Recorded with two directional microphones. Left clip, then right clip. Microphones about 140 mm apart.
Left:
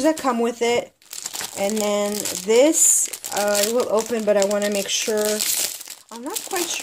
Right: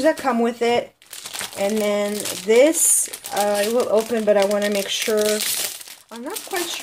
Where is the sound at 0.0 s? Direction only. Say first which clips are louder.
Right 1 dB; 35° left (ahead or behind).